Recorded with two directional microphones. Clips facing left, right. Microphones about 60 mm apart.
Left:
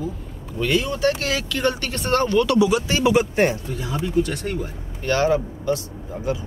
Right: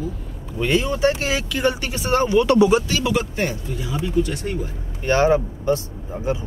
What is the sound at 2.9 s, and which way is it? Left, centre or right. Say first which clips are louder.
Speech: left 3 dB; left.